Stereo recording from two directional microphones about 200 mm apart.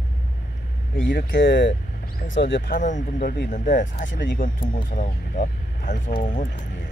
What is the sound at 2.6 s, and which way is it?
Speech, 40° left (ahead or behind).